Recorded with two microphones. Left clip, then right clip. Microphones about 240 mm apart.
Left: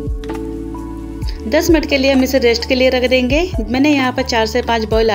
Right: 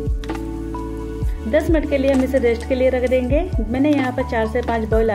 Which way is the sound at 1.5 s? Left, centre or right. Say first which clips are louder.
Left 4 dB; centre.